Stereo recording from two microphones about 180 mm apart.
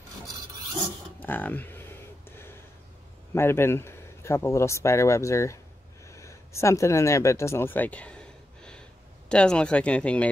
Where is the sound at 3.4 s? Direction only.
15° left (ahead or behind).